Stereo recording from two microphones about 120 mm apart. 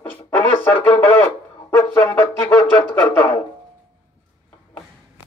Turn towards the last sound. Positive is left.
turn(degrees=20)  # may be behind; listen again after turning